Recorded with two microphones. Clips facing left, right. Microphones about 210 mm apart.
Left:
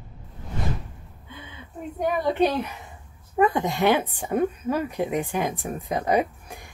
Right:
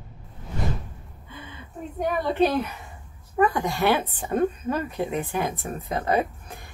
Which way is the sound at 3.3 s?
20° left (ahead or behind).